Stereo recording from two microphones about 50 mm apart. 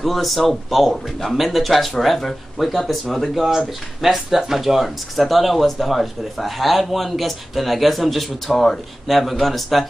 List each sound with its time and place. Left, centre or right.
0.0 s speech: centre